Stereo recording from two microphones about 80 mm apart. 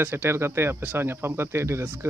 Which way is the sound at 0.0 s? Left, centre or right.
Right.